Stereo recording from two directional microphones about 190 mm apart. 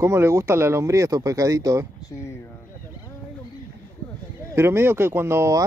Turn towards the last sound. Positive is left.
turn(degrees=-15)  # may be behind; listen again after turning